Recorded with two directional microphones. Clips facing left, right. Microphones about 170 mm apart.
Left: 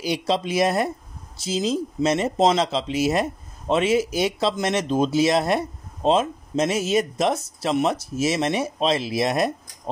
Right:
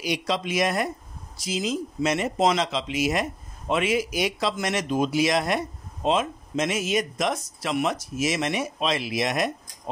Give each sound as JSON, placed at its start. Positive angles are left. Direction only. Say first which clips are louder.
{"t": 0.0, "sound": "speech", "louder": "left 3 dB", "side_deg": 30}